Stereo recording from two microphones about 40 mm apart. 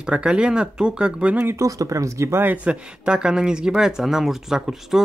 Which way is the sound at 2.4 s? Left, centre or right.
Right.